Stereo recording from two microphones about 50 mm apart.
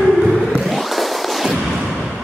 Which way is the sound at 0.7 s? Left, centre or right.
Centre.